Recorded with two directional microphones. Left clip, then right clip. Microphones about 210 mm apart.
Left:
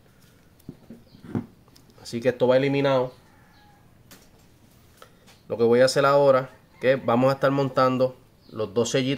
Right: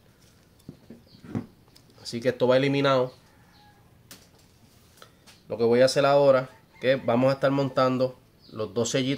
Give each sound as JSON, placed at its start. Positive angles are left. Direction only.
{"t": 0.7, "sound": "horse", "side_deg": -5}
{"t": 2.0, "sound": "speech", "side_deg": 10}
{"t": 5.5, "sound": "speech", "side_deg": 20}